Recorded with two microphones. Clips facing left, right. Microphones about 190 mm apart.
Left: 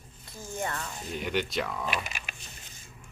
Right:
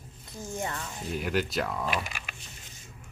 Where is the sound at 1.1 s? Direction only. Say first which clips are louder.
Right 1 dB; centre (ahead or behind).